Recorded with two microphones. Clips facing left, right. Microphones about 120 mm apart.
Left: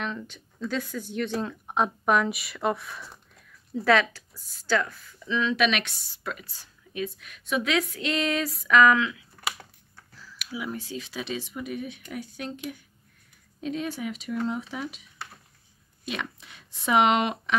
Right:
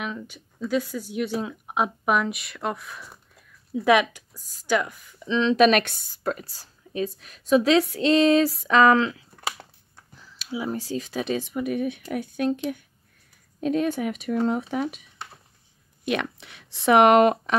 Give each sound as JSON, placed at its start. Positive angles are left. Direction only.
{"t": 0.0, "sound": "speech", "side_deg": -10}
{"t": 3.8, "sound": "speech", "side_deg": -15}
{"t": 5.7, "sound": "a woman's voice", "side_deg": -50}
{"t": 9.9, "sound": "speech", "side_deg": -20}
{"t": 13.6, "sound": "speech", "side_deg": -50}
{"t": 16.1, "sound": "speech", "side_deg": -65}